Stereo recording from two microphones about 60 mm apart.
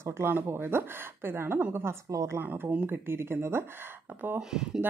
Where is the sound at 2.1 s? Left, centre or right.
Right.